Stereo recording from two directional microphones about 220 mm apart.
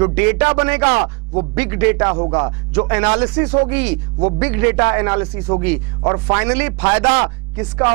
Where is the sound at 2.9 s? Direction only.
10° right (ahead or behind).